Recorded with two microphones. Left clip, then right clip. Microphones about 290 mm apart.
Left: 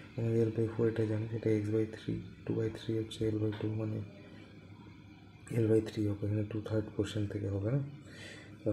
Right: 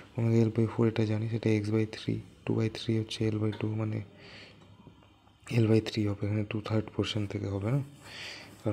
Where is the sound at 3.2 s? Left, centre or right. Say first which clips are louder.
Right 2 dB; right.